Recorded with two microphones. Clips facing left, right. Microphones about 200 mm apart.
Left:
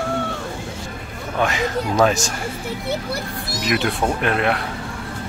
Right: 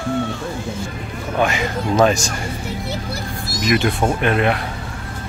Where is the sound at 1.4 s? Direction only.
Centre (ahead or behind).